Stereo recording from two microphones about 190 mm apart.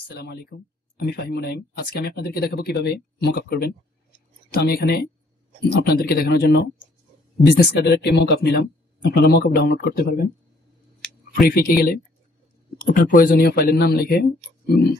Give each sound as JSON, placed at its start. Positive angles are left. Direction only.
{"t": 0.2, "sound": "a man's voice", "side_deg": 60}
{"t": 11.3, "sound": "a man's voice", "side_deg": 50}